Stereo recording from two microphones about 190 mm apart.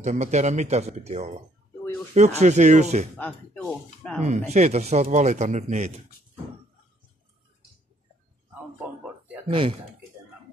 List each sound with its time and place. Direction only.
0.0 s speech: 40° right (ahead or behind)
3.2 s speech: 5° left (ahead or behind)
4.2 s speech: 40° right (ahead or behind)
8.7 s a sound: 10° right (ahead or behind)
9.5 s speech: 30° right (ahead or behind)